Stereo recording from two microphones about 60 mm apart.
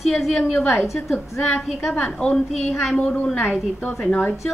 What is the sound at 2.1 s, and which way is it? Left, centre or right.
Speech, centre.